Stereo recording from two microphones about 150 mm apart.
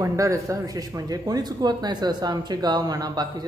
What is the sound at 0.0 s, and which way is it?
Speech, 20° right (ahead or behind).